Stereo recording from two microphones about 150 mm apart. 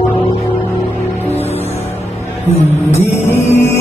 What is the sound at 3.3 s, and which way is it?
Music, 15° left (ahead or behind).